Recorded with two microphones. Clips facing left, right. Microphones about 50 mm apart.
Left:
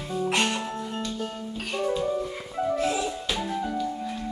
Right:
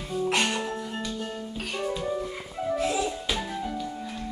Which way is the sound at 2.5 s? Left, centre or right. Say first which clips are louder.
Left 2 dB; centre.